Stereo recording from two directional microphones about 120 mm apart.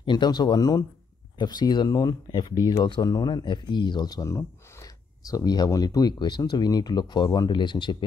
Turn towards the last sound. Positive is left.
turn(degrees=40)  # may be behind; listen again after turning